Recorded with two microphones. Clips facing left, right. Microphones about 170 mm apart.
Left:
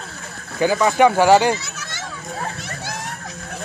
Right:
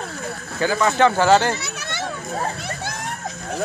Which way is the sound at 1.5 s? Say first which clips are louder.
Right 1 dB; 65° right (ahead or behind).